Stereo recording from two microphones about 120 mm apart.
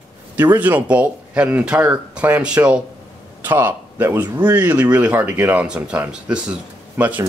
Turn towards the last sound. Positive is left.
turn(degrees=-15)  # may be behind; listen again after turning